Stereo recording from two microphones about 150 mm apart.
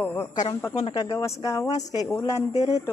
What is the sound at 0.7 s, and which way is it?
Speech, 30° left (ahead or behind).